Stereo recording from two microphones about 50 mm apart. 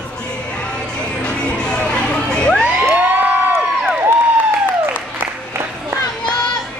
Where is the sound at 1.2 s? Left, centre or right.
Centre.